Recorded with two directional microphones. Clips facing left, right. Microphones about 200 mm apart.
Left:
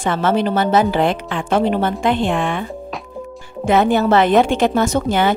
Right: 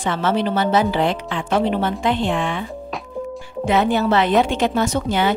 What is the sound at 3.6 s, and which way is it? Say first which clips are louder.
A woman's voice: left 3 dB; 50° left (ahead or behind).